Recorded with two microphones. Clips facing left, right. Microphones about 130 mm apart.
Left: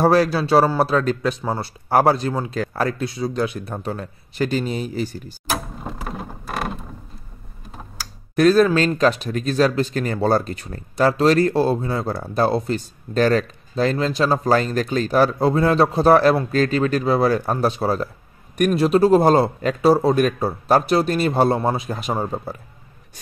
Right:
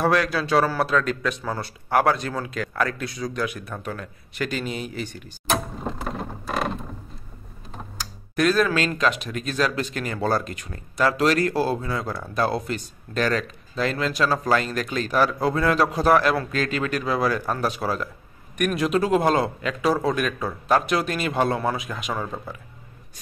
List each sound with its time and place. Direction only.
0.0 s speech: 35° left (ahead or behind)
5.5 s a sound: centre (ahead or behind)
8.4 s speech: 35° left (ahead or behind)